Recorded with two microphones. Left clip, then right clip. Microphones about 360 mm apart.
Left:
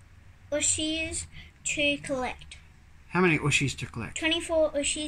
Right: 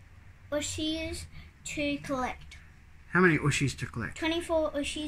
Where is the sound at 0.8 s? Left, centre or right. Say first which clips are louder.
Left 3 dB; centre.